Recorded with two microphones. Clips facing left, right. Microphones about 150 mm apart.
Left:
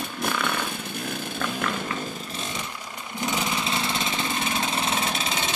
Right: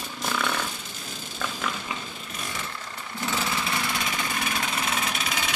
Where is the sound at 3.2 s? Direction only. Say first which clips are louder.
Left 2 dB; 15° left (ahead or behind).